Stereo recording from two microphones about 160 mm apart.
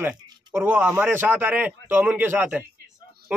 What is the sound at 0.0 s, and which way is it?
A man's voice, 10° right (ahead or behind).